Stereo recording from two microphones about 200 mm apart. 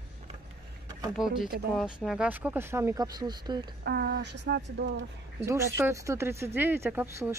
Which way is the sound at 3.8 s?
50° right (ahead or behind).